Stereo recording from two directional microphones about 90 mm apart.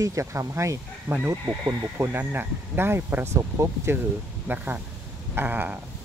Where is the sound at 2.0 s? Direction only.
25° right (ahead or behind).